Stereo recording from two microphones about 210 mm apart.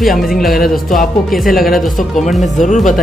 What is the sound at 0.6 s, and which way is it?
Speech, 40° left (ahead or behind).